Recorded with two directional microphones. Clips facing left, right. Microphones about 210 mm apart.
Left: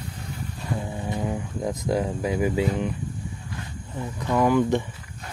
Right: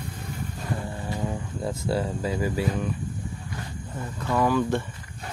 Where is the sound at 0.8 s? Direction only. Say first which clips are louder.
Left 2 dB; 15° left (ahead or behind).